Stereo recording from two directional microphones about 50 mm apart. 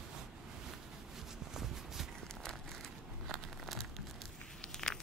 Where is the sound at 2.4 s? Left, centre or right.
Centre.